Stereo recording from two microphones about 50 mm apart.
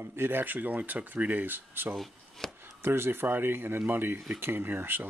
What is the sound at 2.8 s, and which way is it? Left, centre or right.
Speech, right.